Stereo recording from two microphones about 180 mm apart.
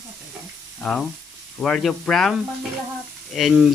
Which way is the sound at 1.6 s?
Centre (ahead or behind).